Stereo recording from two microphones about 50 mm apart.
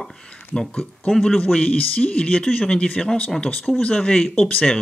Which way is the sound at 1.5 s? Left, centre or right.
Left.